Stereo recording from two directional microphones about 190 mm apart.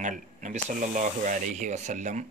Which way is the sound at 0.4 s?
40° right (ahead or behind).